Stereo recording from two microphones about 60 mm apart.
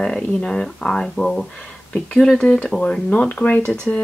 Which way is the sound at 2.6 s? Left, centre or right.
Centre.